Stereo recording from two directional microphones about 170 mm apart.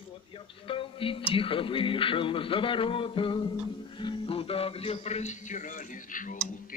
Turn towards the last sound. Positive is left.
turn(degrees=50)  # may be behind; listen again after turning